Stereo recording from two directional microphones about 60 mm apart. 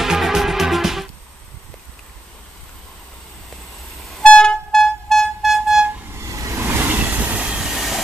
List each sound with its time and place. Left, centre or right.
0.0 s music: centre
4.2 s vehicle: centre
6.2 s vehicle: right
6.6 s vehicle: right
7.3 s vehicle: centre